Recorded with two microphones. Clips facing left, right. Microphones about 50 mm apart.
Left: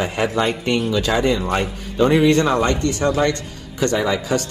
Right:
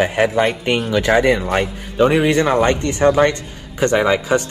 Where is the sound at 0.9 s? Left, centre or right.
Right.